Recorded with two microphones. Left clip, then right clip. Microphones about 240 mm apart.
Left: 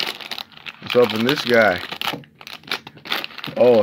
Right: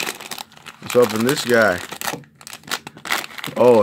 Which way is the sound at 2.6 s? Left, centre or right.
Centre.